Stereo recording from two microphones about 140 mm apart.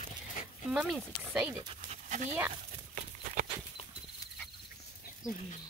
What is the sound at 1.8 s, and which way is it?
Dog, 60° right (ahead or behind).